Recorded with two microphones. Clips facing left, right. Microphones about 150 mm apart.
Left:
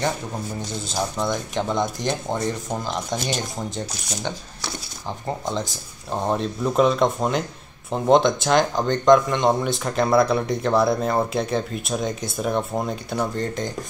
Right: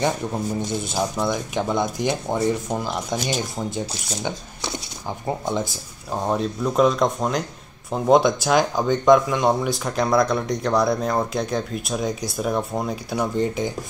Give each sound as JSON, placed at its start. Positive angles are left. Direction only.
{"t": 0.9, "sound": "speech", "side_deg": -10}
{"t": 4.2, "sound": "speech", "side_deg": -20}
{"t": 5.2, "sound": "speech", "side_deg": -10}